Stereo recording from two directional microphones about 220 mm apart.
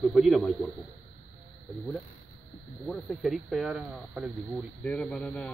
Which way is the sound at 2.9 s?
Centre (ahead or behind).